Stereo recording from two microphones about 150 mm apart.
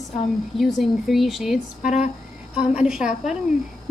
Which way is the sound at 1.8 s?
50° left (ahead or behind).